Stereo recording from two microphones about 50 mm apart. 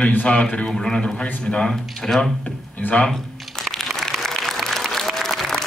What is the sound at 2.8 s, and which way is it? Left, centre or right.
Speech, left.